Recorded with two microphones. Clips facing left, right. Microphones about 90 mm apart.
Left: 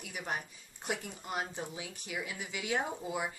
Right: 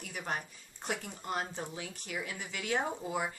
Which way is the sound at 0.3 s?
10° left (ahead or behind).